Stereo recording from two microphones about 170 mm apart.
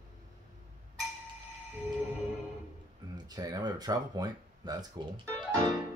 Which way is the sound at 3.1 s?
20° right (ahead or behind).